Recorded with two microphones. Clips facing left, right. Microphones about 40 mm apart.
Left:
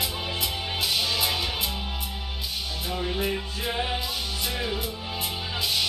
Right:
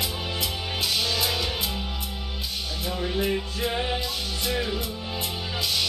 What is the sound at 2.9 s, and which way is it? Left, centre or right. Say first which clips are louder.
Music: right 2 dB; centre.